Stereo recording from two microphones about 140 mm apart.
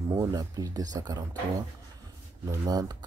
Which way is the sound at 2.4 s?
25° right (ahead or behind).